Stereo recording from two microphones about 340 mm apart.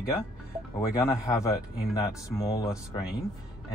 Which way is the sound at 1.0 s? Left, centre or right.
Centre.